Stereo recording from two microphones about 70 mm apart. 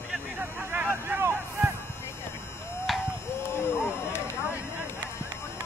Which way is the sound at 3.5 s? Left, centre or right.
Left.